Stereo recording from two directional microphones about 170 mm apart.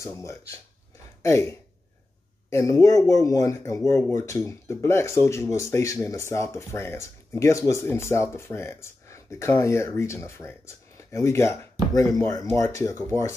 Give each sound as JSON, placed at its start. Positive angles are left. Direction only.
{"t": 0.0, "sound": "speech", "side_deg": 15}